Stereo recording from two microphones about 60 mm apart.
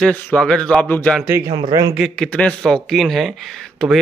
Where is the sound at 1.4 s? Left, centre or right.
Right.